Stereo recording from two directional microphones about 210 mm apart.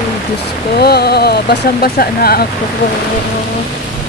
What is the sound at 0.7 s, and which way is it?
Speech, 50° left (ahead or behind).